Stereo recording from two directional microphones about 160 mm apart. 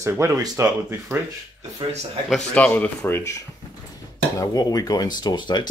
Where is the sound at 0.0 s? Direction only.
15° right (ahead or behind).